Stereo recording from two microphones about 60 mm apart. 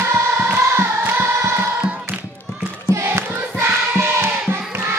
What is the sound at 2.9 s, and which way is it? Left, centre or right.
Choir, right.